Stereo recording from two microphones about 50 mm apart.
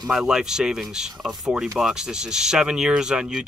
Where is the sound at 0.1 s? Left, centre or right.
Centre.